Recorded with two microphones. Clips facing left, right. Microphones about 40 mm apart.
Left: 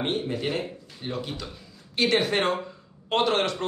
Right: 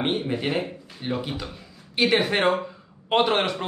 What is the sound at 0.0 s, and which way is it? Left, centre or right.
A man's voice, right.